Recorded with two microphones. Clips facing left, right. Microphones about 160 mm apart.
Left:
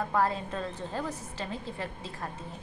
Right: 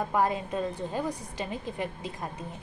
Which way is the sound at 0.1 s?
15° right (ahead or behind).